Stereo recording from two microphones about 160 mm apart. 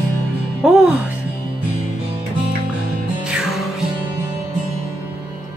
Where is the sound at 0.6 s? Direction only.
5° right (ahead or behind).